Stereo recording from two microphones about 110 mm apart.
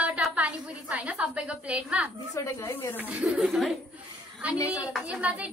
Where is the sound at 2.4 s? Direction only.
25° left (ahead or behind).